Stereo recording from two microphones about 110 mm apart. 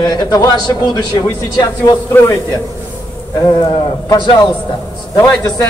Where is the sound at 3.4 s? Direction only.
40° left (ahead or behind).